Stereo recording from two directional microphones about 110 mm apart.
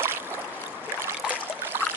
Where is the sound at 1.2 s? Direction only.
15° right (ahead or behind).